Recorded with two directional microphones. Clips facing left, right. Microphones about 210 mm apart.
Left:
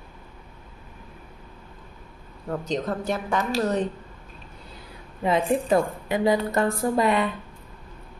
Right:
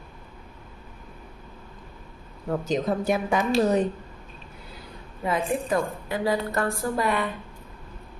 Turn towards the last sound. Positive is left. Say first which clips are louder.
# left 4 dB
turn(degrees=20)  # may be behind; listen again after turning